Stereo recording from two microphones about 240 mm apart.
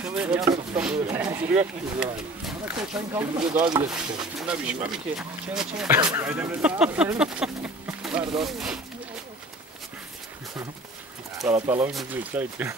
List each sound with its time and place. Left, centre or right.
0.0 s speech: centre
0.7 s a sound: centre
1.6 s speech: centre
3.9 s speech: centre
11.6 s speech: centre